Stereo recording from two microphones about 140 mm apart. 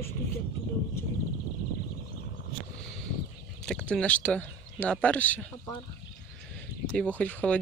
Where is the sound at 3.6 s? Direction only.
5° left (ahead or behind).